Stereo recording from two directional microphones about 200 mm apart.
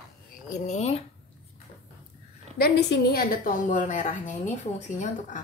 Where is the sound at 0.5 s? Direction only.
35° left (ahead or behind).